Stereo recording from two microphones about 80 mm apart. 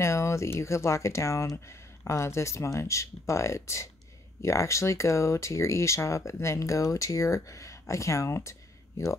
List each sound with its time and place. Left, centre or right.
0.0 s speech: left